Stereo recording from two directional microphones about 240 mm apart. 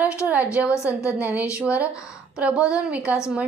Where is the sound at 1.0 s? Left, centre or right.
Centre.